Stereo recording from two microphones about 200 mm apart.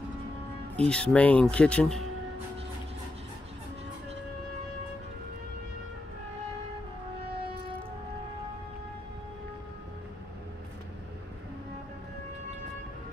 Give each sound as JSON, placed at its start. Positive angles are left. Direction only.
{"t": 0.7, "sound": "speech", "side_deg": 5}